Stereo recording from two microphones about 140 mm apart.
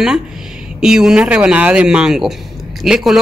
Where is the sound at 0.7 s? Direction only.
5° right (ahead or behind).